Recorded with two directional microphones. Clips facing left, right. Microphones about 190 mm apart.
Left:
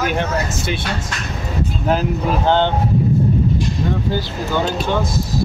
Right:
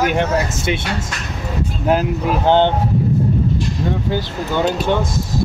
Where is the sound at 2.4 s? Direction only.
15° right (ahead or behind).